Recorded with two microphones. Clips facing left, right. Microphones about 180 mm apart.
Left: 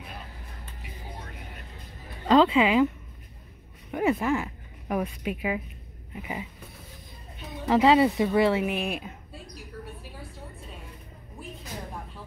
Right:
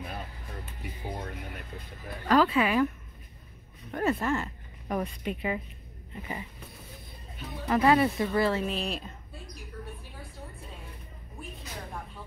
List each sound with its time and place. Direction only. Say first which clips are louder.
2.2 s speech: left 4 dB; 20° left (ahead or behind)
3.9 s speech: left 3 dB; 10° left (ahead or behind)
7.6 s speech: left 3 dB; 20° left (ahead or behind)